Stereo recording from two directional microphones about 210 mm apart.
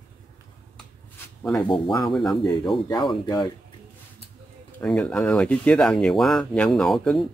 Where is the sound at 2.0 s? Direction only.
Centre (ahead or behind).